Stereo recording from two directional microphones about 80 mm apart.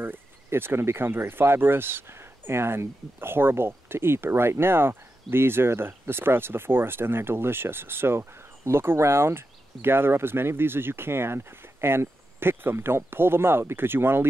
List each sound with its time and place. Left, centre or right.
0.0 s speech: right